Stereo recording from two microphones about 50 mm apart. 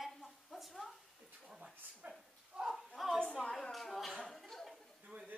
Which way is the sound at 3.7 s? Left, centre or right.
Centre.